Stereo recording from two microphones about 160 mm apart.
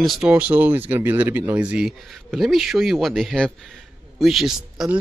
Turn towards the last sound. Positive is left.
turn(degrees=0)  # may be behind; listen again after turning